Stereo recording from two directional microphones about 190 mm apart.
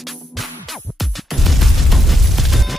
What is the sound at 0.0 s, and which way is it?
Music, centre (ahead or behind).